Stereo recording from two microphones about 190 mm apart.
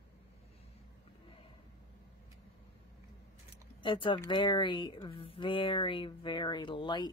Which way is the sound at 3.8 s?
25° left (ahead or behind).